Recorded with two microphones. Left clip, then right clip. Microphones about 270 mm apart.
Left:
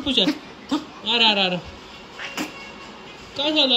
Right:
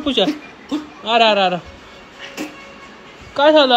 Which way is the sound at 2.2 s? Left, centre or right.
Centre.